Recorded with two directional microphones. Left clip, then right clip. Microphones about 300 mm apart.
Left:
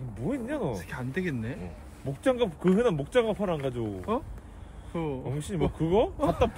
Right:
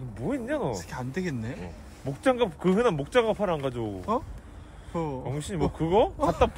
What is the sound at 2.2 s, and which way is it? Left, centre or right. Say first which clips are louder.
Speech: right 1 dB; right.